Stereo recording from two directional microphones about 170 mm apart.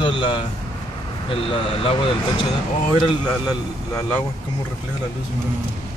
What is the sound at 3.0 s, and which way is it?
A man's voice, 20° left (ahead or behind).